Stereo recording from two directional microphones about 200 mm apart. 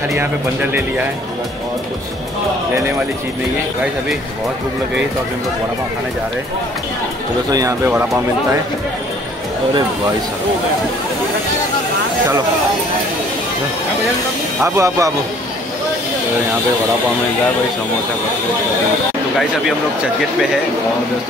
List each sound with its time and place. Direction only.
0.2 s speech: 10° right (ahead or behind)
7.5 s speech: 15° right (ahead or behind)
14.6 s speech: 15° right (ahead or behind)